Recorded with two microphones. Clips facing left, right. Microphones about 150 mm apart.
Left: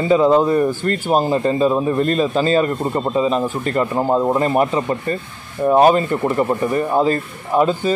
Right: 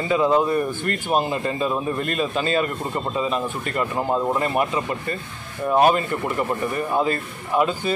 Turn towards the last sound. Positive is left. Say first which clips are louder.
# left 5 dB
turn(degrees=40)  # may be behind; listen again after turning